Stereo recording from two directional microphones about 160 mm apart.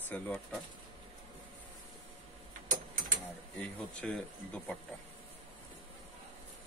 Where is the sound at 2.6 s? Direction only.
55° right (ahead or behind).